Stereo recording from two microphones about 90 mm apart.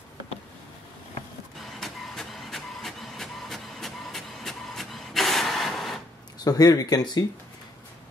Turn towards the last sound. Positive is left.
turn(degrees=50)  # may be behind; listen again after turning